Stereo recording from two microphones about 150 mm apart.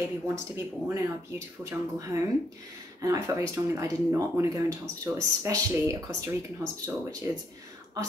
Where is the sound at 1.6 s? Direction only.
20° right (ahead or behind).